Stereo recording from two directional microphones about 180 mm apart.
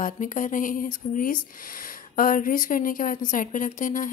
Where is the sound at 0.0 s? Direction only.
45° left (ahead or behind).